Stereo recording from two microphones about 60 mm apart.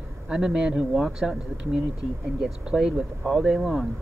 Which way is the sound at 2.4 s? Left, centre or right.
Centre.